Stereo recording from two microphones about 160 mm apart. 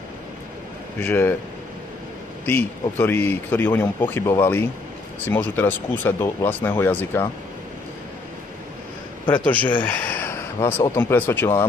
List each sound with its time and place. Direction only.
0.9 s speech: 15° left (ahead or behind)
2.4 s speech: 15° left (ahead or behind)
9.3 s speech: 10° left (ahead or behind)